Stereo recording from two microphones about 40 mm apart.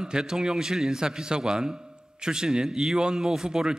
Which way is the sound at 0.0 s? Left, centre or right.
Centre.